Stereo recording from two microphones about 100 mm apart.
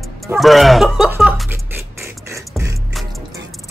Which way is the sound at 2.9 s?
Centre (ahead or behind).